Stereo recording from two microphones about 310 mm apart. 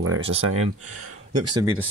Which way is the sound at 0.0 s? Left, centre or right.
Right.